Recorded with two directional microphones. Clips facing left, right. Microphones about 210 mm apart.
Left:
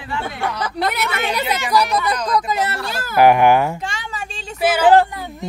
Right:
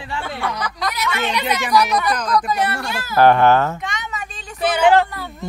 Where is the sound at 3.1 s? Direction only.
10° left (ahead or behind).